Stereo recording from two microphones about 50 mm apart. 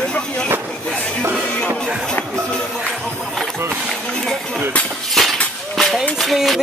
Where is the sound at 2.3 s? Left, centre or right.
Centre.